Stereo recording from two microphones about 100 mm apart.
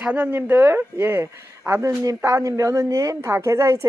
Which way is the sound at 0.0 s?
20° right (ahead or behind).